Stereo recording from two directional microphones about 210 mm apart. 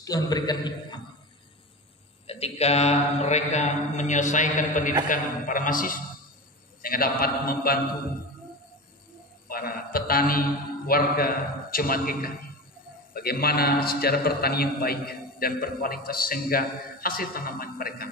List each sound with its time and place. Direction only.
0.0 s a man's voice: 20° left (ahead or behind)
2.2 s mantra: 30° left (ahead or behind)
6.8 s a man's voice: 45° left (ahead or behind)
9.5 s a man's voice: 45° left (ahead or behind)